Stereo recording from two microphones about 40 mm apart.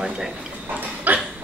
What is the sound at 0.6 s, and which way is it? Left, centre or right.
Dog, right.